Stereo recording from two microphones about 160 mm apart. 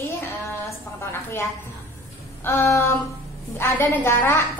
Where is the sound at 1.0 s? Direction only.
15° left (ahead or behind).